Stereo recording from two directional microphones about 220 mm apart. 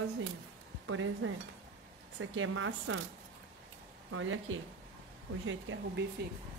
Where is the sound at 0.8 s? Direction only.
65° right (ahead or behind).